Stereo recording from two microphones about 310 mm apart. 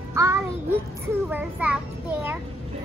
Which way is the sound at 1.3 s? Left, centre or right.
Centre.